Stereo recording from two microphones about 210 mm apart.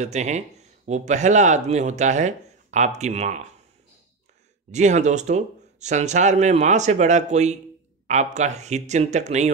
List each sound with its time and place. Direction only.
0.0 s speech: 35° right (ahead or behind)
4.6 s speech: 35° right (ahead or behind)